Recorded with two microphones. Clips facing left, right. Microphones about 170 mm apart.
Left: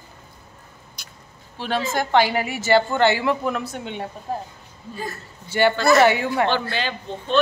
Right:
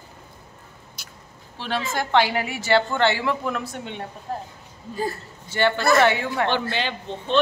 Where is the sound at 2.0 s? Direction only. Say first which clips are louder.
Left 1 dB; centre (ahead or behind).